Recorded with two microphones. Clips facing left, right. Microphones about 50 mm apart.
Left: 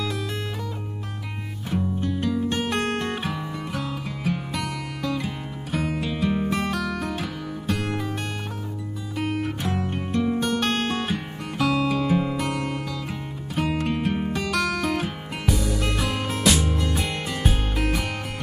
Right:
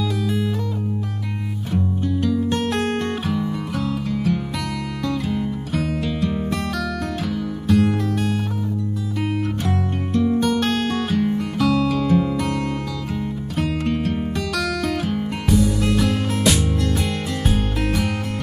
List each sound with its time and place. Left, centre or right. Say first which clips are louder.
1.7 s music: right 3 dB; centre
9.6 s music: right 3 dB; centre
13.6 s music: right 2 dB; centre
15.4 s music: right 5 dB; centre